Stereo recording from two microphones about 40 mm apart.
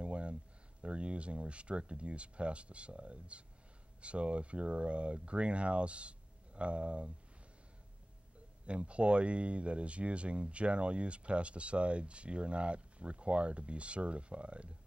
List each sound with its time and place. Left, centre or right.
0.0 s a sound: right
0.8 s speech: right
8.6 s speech: right